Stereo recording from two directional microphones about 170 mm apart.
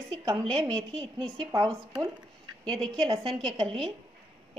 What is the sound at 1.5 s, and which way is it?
A woman's voice, 20° right (ahead or behind).